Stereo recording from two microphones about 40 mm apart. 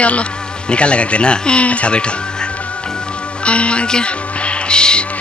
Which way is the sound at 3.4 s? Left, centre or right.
Left.